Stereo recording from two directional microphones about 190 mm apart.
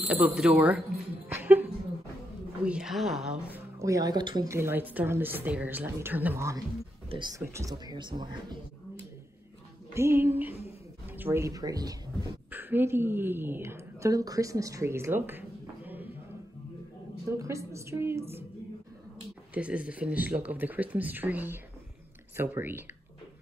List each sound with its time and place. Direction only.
0.1 s a woman's voice: 5° right (ahead or behind)
1.3 s a sound: 10° right (ahead or behind)
2.6 s a woman's voice: 5° right (ahead or behind); by 8.5 s 25° right (ahead or behind)
9.9 s a woman's voice: 15° right (ahead or behind)
17.3 s a woman's voice: 15° right (ahead or behind)
19.5 s a woman's voice: 5° right (ahead or behind)